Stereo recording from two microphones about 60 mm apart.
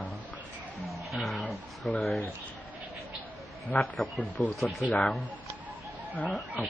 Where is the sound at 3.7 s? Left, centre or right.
Left.